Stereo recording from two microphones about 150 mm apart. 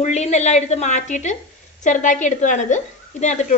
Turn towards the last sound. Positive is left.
turn(degrees=50)  # may be behind; listen again after turning